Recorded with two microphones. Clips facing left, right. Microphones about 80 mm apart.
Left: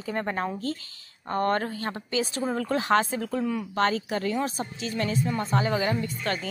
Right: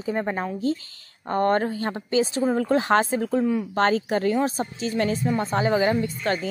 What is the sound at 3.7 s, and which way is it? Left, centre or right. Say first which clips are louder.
A woman's voice: right 3 dB; right.